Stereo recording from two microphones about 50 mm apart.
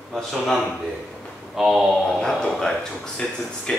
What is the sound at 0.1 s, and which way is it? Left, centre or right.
Speech, centre.